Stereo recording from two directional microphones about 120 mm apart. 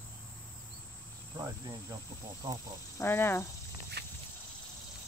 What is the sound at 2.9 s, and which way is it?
Speech, 20° left (ahead or behind).